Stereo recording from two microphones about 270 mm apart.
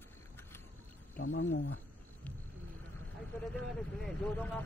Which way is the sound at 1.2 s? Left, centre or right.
Left.